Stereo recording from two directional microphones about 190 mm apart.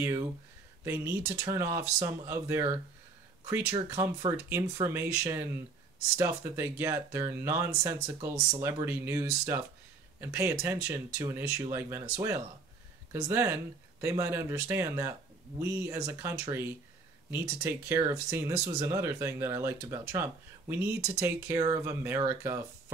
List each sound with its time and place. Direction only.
0.0 s speech: 20° right (ahead or behind)
3.7 s speech: 20° right (ahead or behind)